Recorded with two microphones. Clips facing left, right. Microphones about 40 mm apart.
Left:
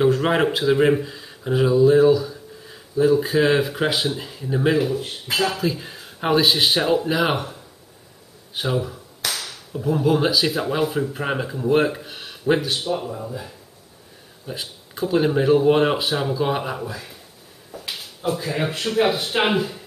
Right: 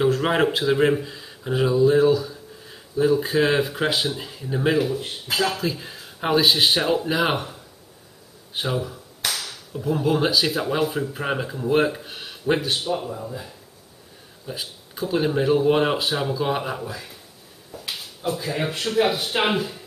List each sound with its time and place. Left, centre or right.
0.2 s speech: centre
8.5 s speech: centre
9.3 s a sound: centre
9.9 s speech: centre
17.7 s a sound: left
18.6 s speech: centre